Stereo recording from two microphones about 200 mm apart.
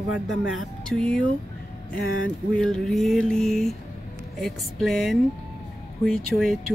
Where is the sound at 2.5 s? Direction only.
5° left (ahead or behind).